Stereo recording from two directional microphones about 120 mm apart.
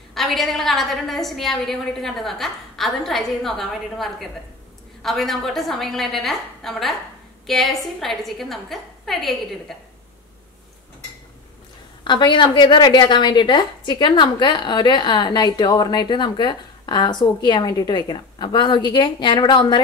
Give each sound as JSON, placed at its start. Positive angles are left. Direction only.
{"t": 0.1, "sound": "a woman's voice", "side_deg": 0}
{"t": 12.0, "sound": "a woman's voice", "side_deg": 40}